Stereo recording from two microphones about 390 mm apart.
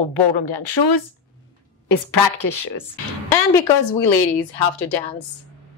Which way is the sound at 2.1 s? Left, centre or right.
Left.